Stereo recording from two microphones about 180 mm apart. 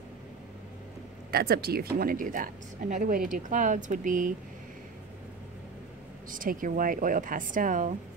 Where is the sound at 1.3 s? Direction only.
55° right (ahead or behind).